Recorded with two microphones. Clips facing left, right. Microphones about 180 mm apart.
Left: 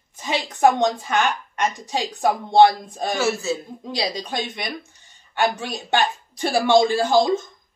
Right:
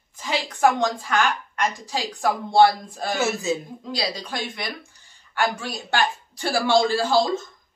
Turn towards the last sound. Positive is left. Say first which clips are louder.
# left 3 dB
turn(degrees=15)  # may be behind; listen again after turning